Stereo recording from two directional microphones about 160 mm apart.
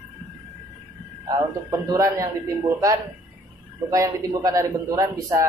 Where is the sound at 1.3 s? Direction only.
20° right (ahead or behind).